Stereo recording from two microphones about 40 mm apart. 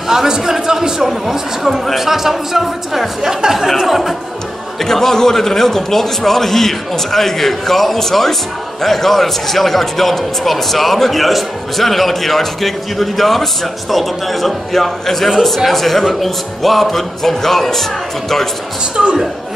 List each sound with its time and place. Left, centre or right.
0.1 s a man's voice: centre
4.8 s a man's voice: centre
18.9 s a man's voice: centre